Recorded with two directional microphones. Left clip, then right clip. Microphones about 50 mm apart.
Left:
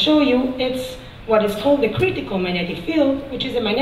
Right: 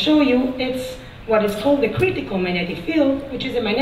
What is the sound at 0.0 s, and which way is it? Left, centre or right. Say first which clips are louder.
Speech: left 1 dB; left.